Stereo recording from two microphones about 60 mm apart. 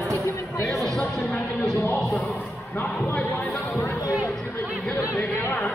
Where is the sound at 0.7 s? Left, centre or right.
Centre.